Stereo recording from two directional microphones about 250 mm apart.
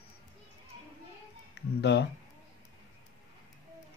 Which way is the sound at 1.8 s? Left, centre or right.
Left.